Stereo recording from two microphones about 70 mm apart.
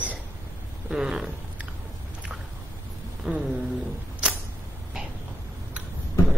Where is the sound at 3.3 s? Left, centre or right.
Centre.